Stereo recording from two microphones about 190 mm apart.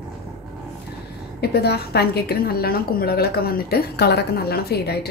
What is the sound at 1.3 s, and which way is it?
A woman's voice, 60° left (ahead or behind).